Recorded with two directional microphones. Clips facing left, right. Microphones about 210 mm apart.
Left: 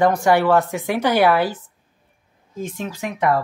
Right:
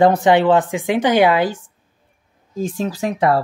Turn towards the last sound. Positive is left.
turn(degrees=-30)  # may be behind; listen again after turning